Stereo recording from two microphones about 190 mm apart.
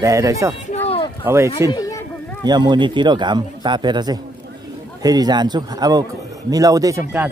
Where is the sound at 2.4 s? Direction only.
20° right (ahead or behind).